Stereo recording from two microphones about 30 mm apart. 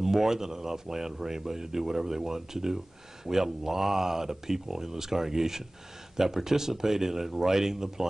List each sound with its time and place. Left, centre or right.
0.0 s speech: centre